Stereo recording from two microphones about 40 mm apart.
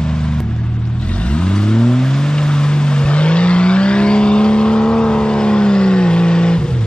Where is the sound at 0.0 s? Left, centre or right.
Left.